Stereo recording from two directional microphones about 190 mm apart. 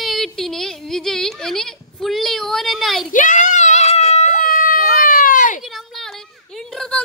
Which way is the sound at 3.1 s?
40° left (ahead or behind).